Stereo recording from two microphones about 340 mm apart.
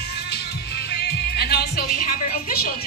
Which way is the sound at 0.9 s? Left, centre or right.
Left.